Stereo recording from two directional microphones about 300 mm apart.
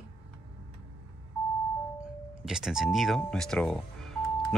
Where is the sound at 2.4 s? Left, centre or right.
Centre.